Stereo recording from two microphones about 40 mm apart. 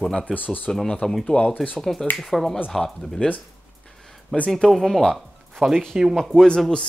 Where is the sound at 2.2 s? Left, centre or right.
Centre.